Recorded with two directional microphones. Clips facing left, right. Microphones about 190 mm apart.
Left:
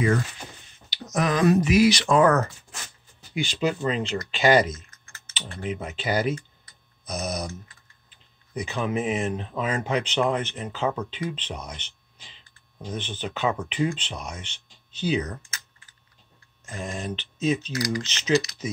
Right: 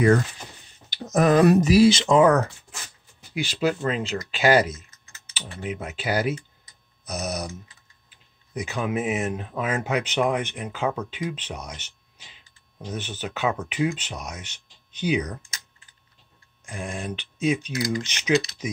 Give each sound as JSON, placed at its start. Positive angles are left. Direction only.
{"t": 0.8, "sound": "a sound", "side_deg": -50}
{"t": 1.6, "sound": "speech", "side_deg": -30}
{"t": 3.2, "sound": "speech", "side_deg": -5}
{"t": 8.5, "sound": "speech", "side_deg": -10}
{"t": 16.6, "sound": "speech", "side_deg": -10}